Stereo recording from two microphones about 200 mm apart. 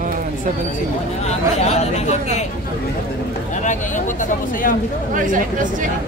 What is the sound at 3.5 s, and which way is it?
Speech, 40° left (ahead or behind).